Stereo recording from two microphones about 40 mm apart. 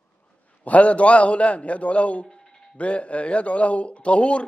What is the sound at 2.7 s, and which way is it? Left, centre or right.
A man's voice, left.